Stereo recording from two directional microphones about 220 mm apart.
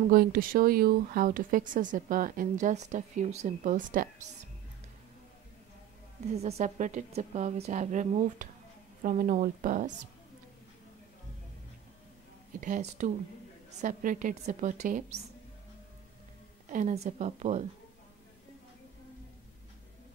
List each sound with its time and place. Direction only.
0.1 s speech: 40° right (ahead or behind)
6.3 s speech: 30° right (ahead or behind)
12.5 s speech: 35° right (ahead or behind)
16.6 s speech: 35° right (ahead or behind)